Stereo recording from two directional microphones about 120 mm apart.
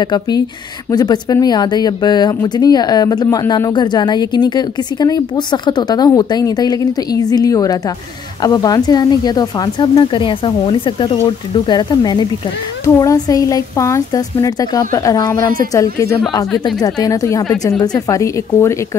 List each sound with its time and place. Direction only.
0.0 s a woman's voice: 35° left (ahead or behind)